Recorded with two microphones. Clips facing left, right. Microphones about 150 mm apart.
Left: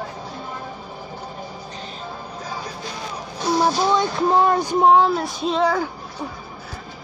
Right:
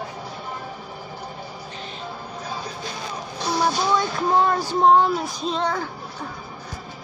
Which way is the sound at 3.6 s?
20° left (ahead or behind).